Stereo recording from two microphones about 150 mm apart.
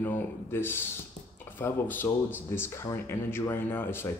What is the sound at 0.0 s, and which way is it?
Speech, 15° left (ahead or behind).